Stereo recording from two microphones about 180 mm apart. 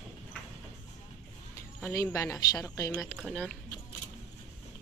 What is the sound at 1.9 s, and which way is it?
A woman's voice, 15° left (ahead or behind).